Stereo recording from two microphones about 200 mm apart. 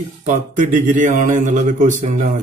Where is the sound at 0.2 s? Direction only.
40° right (ahead or behind).